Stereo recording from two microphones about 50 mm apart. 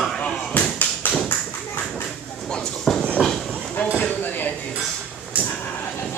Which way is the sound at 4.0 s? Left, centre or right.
Left.